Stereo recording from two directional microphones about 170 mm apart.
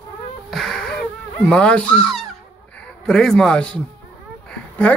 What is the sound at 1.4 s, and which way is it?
A woman's voice, 5° left (ahead or behind).